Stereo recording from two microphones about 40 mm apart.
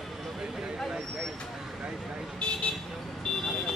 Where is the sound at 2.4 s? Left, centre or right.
Left.